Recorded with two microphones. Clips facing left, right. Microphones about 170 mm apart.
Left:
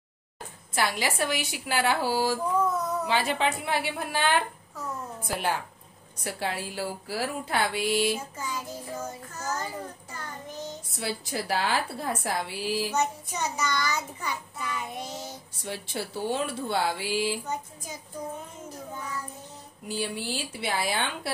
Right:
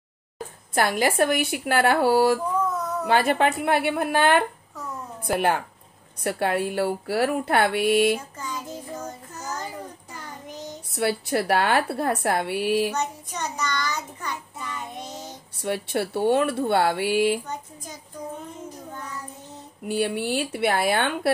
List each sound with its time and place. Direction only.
0.7 s a woman's voice: 50° right (ahead or behind)
8.4 s child singing: 5° left (ahead or behind)
10.1 s child singing: 15° right (ahead or behind)
10.9 s a woman's voice: 60° right (ahead or behind)
12.9 s child singing: 5° left (ahead or behind)
15.5 s a woman's voice: 60° right (ahead or behind)
19.9 s a woman's voice: 60° right (ahead or behind)